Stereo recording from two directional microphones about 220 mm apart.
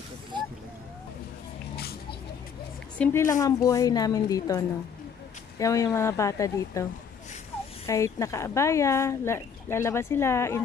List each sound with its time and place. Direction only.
0.3 s vehicle: 20° right (ahead or behind)
1.8 s a sound: 45° left (ahead or behind)
3.0 s speech: 10° left (ahead or behind)